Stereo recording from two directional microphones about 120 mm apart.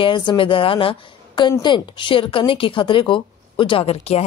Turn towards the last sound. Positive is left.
turn(degrees=60)  # may be behind; listen again after turning